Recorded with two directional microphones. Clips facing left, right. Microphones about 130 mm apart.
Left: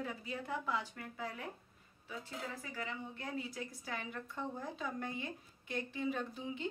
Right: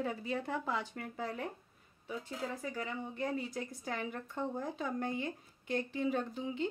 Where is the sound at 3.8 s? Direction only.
40° right (ahead or behind).